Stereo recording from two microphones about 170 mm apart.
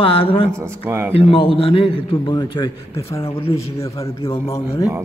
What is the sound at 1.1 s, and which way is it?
A man's voice, 35° left (ahead or behind).